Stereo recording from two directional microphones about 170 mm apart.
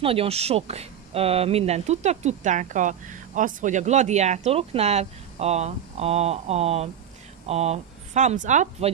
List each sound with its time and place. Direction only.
0.0 s speech: 35° right (ahead or behind)